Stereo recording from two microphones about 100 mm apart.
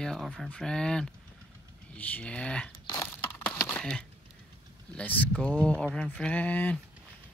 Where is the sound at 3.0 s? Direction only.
20° left (ahead or behind).